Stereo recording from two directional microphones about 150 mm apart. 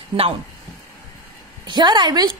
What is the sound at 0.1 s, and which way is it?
Speech, 40° right (ahead or behind).